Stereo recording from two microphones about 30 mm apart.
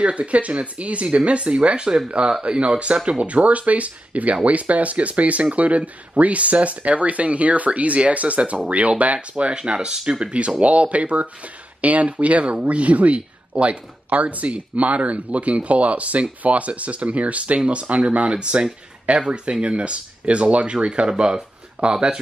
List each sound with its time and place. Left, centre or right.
0.0 s speech: right
9.5 s speech: right
10.6 s speech: right